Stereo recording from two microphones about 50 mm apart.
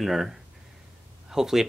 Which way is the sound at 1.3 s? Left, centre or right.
Centre.